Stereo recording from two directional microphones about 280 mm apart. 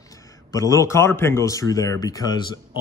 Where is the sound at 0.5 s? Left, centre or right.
Centre.